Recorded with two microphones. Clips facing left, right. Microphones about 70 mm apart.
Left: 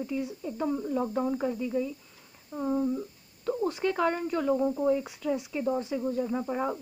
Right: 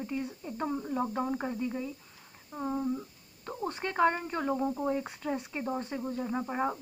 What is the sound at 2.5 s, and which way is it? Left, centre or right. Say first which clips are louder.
Speech: left 5 dB; centre.